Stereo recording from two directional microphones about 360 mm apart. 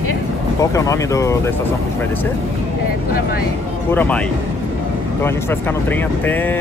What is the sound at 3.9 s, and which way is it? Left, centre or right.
Speech, centre.